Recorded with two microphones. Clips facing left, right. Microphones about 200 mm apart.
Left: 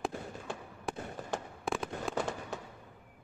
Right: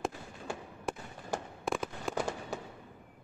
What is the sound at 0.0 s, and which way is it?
Fireworks, centre (ahead or behind).